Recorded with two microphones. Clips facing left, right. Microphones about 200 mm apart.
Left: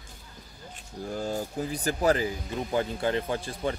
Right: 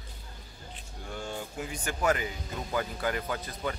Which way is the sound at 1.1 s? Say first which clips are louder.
Left 6 dB; 35° left (ahead or behind).